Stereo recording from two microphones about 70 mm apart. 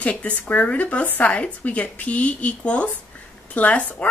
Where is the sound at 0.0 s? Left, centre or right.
Centre.